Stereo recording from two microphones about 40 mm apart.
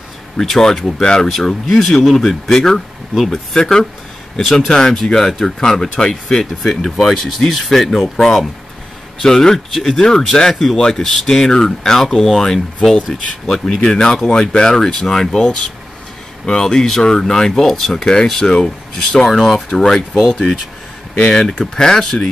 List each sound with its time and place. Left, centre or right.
0.4 s speech: centre
4.4 s speech: centre
9.2 s speech: centre
10.8 s speech: centre
13.5 s speech: centre
21.3 s speech: centre